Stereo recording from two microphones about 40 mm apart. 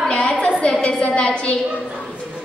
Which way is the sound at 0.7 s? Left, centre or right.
Left.